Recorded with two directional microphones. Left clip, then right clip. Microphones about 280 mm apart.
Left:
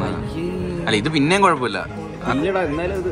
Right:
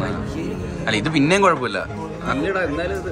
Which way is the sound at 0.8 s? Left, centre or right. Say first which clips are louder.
Even; centre.